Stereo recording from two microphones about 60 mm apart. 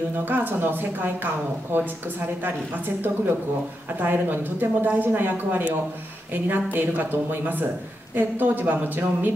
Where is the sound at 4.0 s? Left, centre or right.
Right.